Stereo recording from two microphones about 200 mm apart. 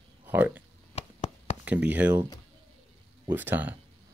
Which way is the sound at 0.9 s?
35° left (ahead or behind).